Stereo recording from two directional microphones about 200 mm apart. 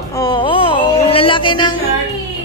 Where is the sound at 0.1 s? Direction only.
20° left (ahead or behind).